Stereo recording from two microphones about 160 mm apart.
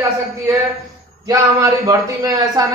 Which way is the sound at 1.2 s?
20° right (ahead or behind).